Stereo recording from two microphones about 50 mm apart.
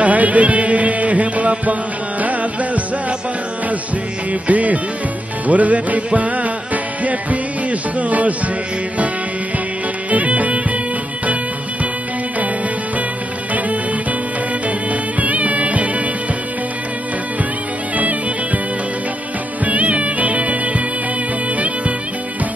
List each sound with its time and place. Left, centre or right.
0.0 s music: right
4.3 s music: right
10.1 s music: right
14.9 s music: right
17.9 s music: right
19.6 s music: right